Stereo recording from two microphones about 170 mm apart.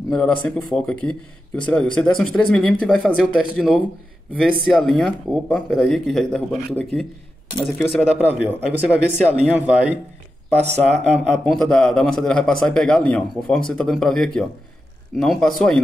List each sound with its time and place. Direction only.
0.1 s a man's voice: 5° left (ahead or behind)
8.0 s speech: 5° right (ahead or behind)
10.5 s speech: 40° right (ahead or behind)
10.8 s a man's voice: 5° left (ahead or behind)